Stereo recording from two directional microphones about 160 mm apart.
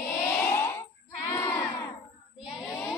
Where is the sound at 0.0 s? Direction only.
15° left (ahead or behind).